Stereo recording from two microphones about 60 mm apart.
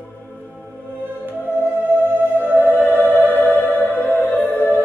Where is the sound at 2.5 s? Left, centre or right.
Left.